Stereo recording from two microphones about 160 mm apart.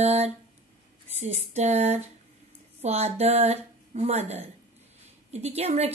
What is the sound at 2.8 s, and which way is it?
A woman's voice, 40° right (ahead or behind).